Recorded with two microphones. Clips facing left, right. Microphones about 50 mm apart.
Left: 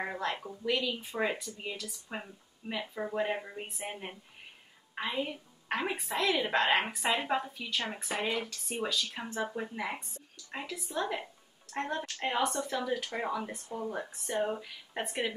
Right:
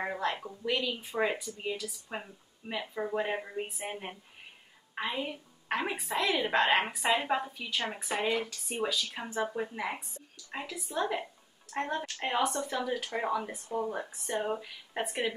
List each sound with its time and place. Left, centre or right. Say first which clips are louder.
0.0 s a woman's voice: right 2 dB; centre